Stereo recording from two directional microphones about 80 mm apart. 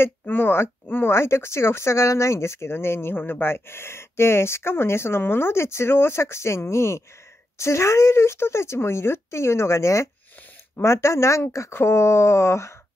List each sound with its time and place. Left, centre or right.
0.0 s speech: left